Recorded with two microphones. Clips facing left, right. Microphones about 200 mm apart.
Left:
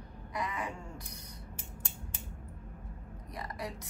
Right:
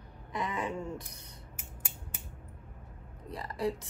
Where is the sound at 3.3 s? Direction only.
30° right (ahead or behind).